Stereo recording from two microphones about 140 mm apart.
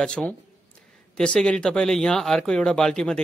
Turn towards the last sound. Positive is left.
turn(degrees=5)  # may be behind; listen again after turning